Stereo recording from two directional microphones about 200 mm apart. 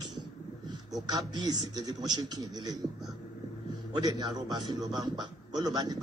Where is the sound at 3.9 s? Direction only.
20° right (ahead or behind).